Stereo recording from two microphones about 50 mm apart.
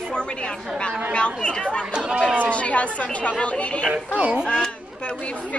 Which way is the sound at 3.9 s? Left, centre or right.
Centre.